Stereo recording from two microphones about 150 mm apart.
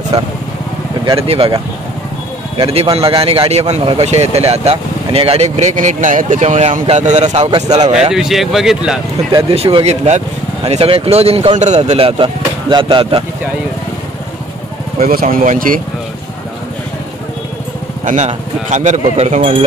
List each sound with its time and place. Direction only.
0.1 s speech: 35° right (ahead or behind)
2.5 s speech: 40° right (ahead or behind)
8.1 s speech: centre (ahead or behind)
9.3 s speech: 40° right (ahead or behind)
15.0 s speech: 75° right (ahead or behind)
18.0 s speech: 55° right (ahead or behind)